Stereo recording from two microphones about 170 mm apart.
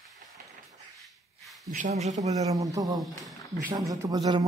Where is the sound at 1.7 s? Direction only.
45° right (ahead or behind).